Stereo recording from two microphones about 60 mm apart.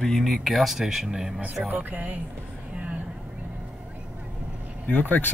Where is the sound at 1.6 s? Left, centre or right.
Right.